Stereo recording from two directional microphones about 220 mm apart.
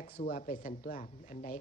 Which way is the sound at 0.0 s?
40° left (ahead or behind).